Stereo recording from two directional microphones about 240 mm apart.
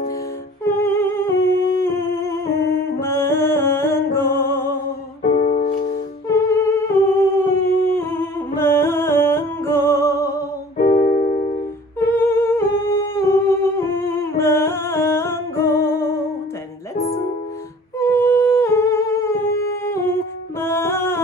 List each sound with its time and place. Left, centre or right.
0.7 s humming: centre
5.4 s music: left
6.9 s humming: centre
10.8 s keyboard: left
12.0 s humming: centre
14.4 s music: centre
16.9 s music: left
17.9 s humming: centre